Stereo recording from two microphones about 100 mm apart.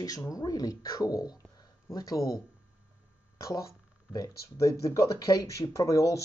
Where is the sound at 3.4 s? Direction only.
35° left (ahead or behind).